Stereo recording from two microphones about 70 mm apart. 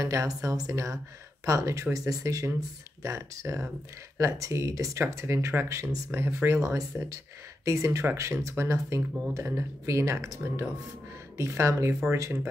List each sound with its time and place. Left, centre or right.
0.0 s speech: right
5.0 s speech: right